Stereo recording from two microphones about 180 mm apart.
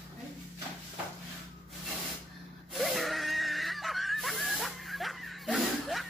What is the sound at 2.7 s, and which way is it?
Wheeze, centre (ahead or behind).